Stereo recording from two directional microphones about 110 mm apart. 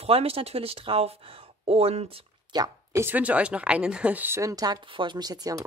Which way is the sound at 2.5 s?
40° right (ahead or behind).